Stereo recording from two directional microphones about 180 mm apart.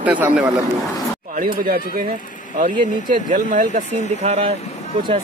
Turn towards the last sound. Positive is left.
turn(degrees=-35)  # may be behind; listen again after turning